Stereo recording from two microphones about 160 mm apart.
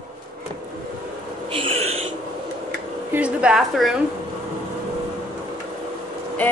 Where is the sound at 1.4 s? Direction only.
35° right (ahead or behind).